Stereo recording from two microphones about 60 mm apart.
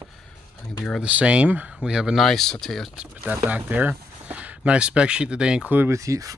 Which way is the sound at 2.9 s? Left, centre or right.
Right.